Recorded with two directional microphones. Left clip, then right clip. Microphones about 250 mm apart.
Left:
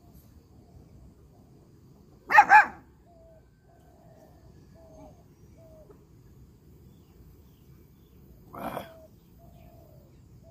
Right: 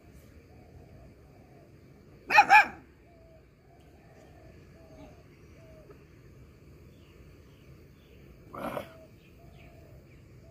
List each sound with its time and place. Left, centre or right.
2.3 s dog: centre
8.5 s dog: centre